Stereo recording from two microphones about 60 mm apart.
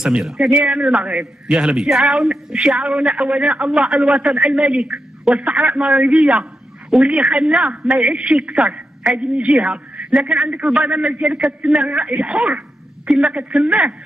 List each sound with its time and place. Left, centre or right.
0.0 s a man's voice: centre